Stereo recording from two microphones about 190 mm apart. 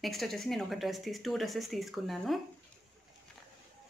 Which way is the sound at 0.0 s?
Centre (ahead or behind).